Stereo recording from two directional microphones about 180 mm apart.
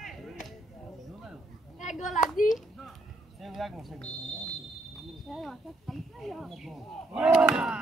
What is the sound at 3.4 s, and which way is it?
Speech, centre (ahead or behind).